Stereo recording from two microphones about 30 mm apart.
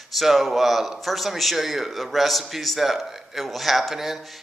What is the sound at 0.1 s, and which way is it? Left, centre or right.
Speech, centre.